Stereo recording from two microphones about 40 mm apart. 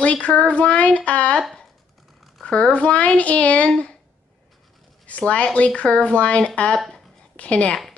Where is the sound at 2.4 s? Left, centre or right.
Left.